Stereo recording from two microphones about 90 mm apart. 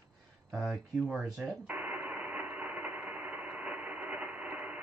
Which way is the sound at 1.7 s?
15° right (ahead or behind).